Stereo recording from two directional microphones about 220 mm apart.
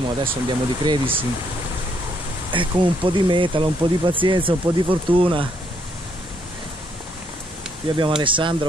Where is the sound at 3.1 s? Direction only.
20° right (ahead or behind).